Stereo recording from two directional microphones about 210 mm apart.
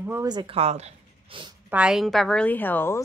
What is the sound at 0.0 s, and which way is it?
Speech, 15° right (ahead or behind).